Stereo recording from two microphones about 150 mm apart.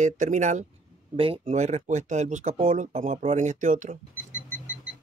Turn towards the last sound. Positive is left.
turn(degrees=-55)  # may be behind; listen again after turning